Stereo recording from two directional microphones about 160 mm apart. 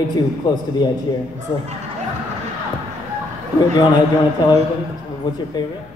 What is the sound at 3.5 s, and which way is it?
A man's voice, 25° left (ahead or behind).